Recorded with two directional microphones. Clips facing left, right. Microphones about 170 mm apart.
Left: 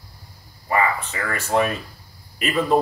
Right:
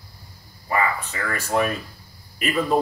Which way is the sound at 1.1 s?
40° left (ahead or behind).